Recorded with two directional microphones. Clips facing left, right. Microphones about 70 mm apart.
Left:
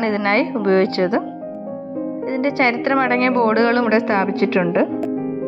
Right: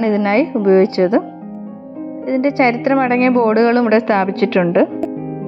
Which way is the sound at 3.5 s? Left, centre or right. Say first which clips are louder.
Right 3 dB; right.